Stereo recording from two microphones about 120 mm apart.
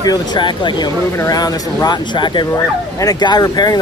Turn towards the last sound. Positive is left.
turn(degrees=35)  # may be behind; listen again after turning